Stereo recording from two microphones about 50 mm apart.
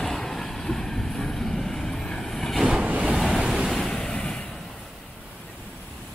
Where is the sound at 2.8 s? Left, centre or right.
Right.